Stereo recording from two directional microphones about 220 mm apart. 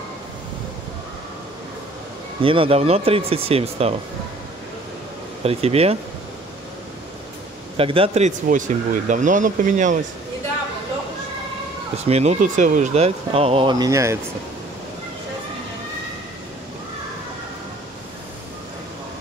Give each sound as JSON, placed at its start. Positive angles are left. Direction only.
{"t": 2.4, "sound": "speech", "side_deg": -25}
{"t": 5.4, "sound": "speech", "side_deg": -25}
{"t": 7.7, "sound": "speech", "side_deg": -25}
{"t": 12.0, "sound": "speech", "side_deg": -30}